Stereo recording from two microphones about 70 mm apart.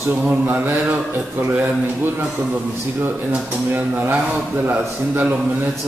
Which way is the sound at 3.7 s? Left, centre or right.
Right.